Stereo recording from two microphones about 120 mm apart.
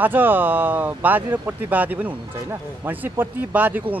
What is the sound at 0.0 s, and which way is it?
Speech, 15° right (ahead or behind).